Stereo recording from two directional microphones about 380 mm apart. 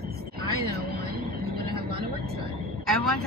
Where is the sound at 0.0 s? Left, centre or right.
Right.